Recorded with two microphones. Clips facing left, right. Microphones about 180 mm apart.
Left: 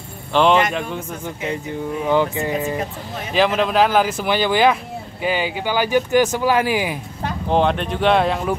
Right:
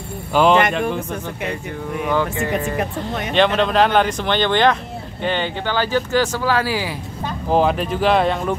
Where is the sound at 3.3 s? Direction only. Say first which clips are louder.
Even; 5° left (ahead or behind).